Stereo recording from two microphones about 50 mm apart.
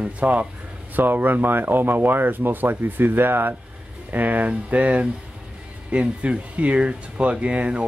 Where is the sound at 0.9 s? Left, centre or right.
Right.